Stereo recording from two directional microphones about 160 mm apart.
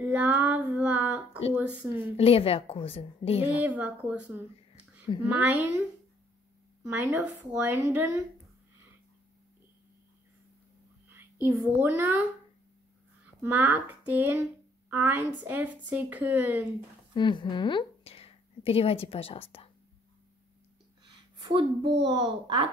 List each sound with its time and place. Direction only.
0.0 s child singing: 10° right (ahead or behind)
1.5 s a woman's voice: 10° right (ahead or behind)
2.0 s a woman's voice: 35° left (ahead or behind)
3.4 s a woman's voice: 10° right (ahead or behind)
11.1 s a child's voice: 10° right (ahead or behind)
13.4 s a woman's voice: 10° right (ahead or behind)
17.1 s a woman's voice: 30° left (ahead or behind)
21.0 s a sound: 30° right (ahead or behind)
22.0 s a child's voice: 30° right (ahead or behind)